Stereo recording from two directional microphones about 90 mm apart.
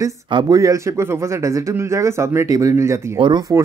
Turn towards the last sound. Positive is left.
turn(degrees=-60)  # may be behind; listen again after turning